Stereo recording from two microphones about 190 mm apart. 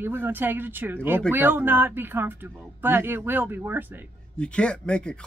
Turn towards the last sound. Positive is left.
turn(degrees=5)  # may be behind; listen again after turning